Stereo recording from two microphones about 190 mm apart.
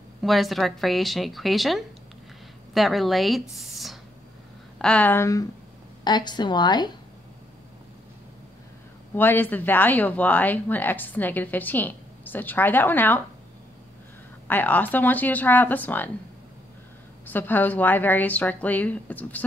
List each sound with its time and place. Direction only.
0.2 s speech: centre (ahead or behind)
3.5 s a sound: centre (ahead or behind)
4.7 s speech: 5° left (ahead or behind); by 6.9 s 20° left (ahead or behind)
9.1 s speech: 10° left (ahead or behind)
14.5 s speech: 10° left (ahead or behind)
17.3 s speech: 10° left (ahead or behind)